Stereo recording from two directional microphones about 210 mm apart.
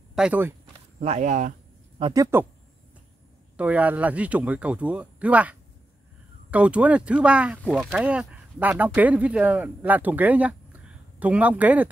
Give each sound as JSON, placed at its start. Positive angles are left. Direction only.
{"t": 0.1, "sound": "speech", "side_deg": -5}
{"t": 0.9, "sound": "speech", "side_deg": -35}
{"t": 2.0, "sound": "speech", "side_deg": -25}
{"t": 3.5, "sound": "speech", "side_deg": -5}